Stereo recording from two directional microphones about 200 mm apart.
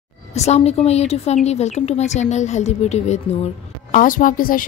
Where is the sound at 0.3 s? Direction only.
35° left (ahead or behind).